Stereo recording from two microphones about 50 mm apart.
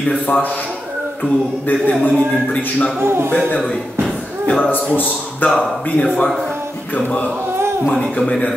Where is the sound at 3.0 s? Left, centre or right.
Right.